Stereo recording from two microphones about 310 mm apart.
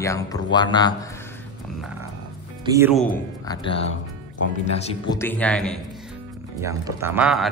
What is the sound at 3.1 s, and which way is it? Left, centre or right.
A man's voice, centre.